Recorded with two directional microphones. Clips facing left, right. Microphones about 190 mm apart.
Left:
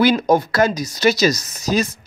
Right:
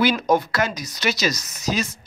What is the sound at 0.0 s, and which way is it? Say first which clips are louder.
Speech: left 4 dB; 35° left (ahead or behind).